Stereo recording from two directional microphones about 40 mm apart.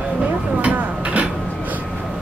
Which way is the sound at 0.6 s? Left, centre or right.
Right.